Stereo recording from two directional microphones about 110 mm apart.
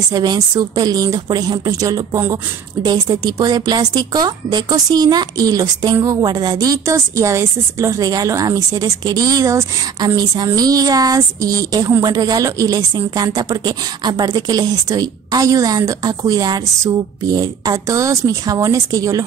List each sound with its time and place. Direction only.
0.1 s a woman's voice: 35° right (ahead or behind)